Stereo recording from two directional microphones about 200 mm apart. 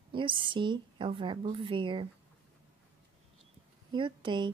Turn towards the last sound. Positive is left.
turn(degrees=-25)  # may be behind; listen again after turning